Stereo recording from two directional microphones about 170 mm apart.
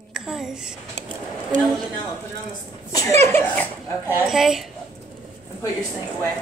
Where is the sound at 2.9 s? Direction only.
15° left (ahead or behind).